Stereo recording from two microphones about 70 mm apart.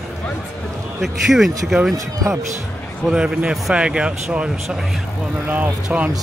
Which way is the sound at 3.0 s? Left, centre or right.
Centre.